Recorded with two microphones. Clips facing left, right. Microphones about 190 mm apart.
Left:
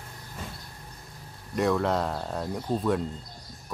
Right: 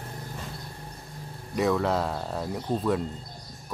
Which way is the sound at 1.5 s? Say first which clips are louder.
Even; centre (ahead or behind).